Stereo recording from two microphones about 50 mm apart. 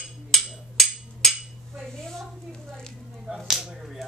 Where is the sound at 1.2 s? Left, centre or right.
Centre.